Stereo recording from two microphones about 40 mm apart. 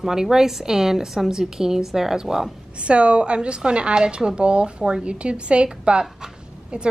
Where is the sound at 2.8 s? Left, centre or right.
Right.